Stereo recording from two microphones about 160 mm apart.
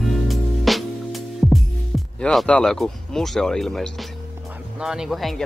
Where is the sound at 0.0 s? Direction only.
Centre (ahead or behind).